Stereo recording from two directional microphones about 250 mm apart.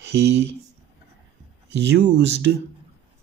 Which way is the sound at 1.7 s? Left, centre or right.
Right.